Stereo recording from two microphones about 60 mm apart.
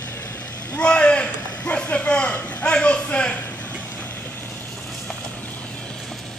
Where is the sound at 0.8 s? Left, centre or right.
Centre.